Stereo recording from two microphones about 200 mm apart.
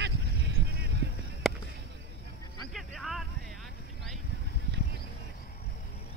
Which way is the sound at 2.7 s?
Centre (ahead or behind).